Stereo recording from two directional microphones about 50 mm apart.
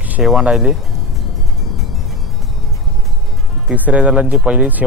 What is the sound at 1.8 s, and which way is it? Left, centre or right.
Music, centre.